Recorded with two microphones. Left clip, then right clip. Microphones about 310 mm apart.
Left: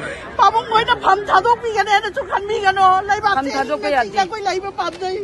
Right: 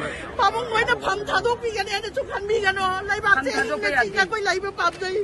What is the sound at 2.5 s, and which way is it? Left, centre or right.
Speech, centre.